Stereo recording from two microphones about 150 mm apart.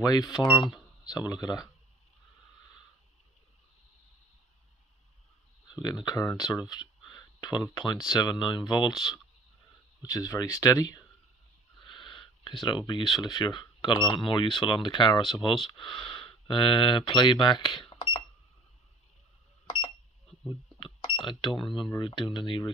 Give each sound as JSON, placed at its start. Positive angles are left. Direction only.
{"t": 0.0, "sound": "speech", "side_deg": 25}
{"t": 5.7, "sound": "speech", "side_deg": 25}
{"t": 11.8, "sound": "speech", "side_deg": 35}
{"t": 20.4, "sound": "speech", "side_deg": 30}